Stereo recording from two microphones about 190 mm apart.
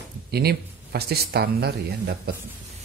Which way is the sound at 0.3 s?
55° right (ahead or behind).